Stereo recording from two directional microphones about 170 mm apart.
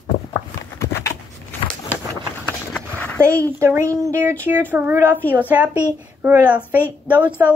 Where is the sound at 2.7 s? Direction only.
10° left (ahead or behind).